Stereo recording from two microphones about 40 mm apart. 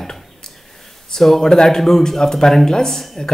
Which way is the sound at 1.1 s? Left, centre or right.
Centre.